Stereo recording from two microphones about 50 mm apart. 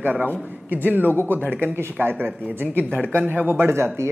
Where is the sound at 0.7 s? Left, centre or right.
Right.